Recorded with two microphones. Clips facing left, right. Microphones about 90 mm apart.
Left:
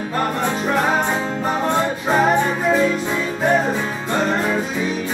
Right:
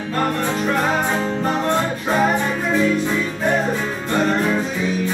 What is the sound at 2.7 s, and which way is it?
Music, 15° left (ahead or behind).